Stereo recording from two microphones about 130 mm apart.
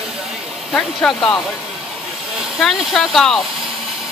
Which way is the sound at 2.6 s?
Centre (ahead or behind).